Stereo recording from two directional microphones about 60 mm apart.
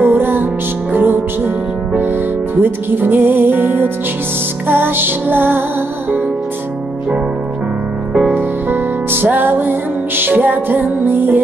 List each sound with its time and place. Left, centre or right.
0.0 s music: right
2.6 s music: right
8.1 s music: centre
8.4 s music: right